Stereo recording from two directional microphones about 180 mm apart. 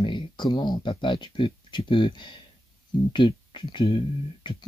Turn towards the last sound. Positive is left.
turn(degrees=25)  # may be behind; listen again after turning